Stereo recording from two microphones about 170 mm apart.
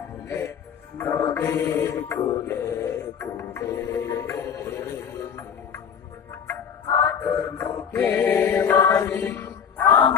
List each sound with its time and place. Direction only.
0.9 s mantra: 15° left (ahead or behind)
6.4 s music: 15° left (ahead or behind)